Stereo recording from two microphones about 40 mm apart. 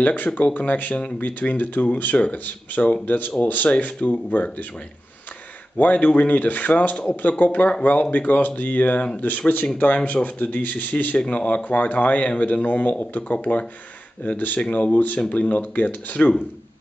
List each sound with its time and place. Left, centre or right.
0.0 s a man's voice: left
0.9 s speech: left
1.2 s a man's voice: left
5.8 s a man's voice: left
11.1 s a man's voice: left